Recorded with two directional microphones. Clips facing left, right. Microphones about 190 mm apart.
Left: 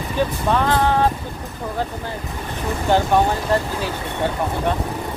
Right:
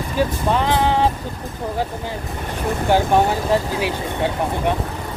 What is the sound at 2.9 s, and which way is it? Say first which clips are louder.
Speech: even; 10° right (ahead or behind).